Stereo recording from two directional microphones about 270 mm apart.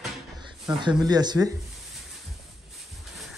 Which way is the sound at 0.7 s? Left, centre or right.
Centre.